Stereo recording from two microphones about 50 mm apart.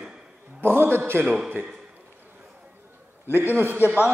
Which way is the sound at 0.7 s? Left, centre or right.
Right.